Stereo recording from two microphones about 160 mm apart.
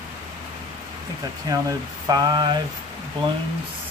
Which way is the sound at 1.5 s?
20° right (ahead or behind).